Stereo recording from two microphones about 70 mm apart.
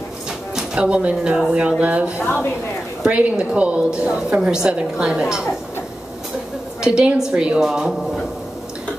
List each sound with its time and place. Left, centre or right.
0.6 s a woman's voice: centre
6.8 s a woman's voice: centre